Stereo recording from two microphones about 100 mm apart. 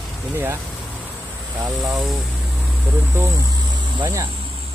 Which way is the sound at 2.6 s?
20° right (ahead or behind).